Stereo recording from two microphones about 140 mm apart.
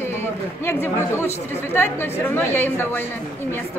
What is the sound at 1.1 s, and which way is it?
A woman's voice, 15° left (ahead or behind).